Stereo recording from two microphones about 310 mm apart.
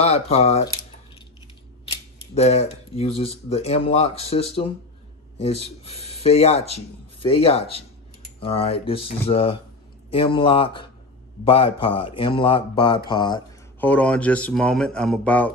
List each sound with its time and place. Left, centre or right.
0.0 s speech: centre
1.9 s speech: left; by 15.5 s centre